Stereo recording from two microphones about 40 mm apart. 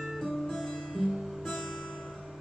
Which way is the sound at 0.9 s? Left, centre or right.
Centre.